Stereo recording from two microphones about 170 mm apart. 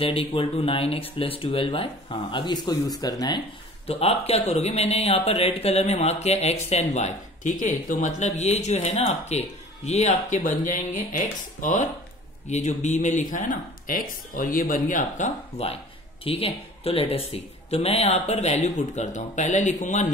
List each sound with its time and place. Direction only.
0.0 s speech: 30° left (ahead or behind)